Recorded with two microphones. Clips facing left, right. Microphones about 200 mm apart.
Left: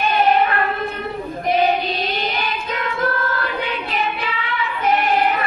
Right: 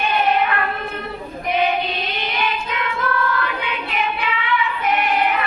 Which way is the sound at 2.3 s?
40° left (ahead or behind).